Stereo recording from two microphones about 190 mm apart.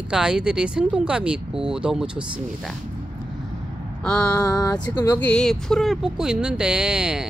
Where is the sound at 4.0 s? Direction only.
5° left (ahead or behind).